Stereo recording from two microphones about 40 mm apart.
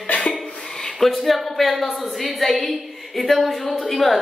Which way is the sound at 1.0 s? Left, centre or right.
Centre.